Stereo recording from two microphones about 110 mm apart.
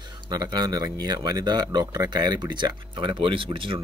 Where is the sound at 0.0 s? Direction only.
40° right (ahead or behind).